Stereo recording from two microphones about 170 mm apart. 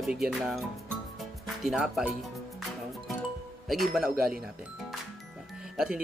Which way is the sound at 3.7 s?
Centre (ahead or behind).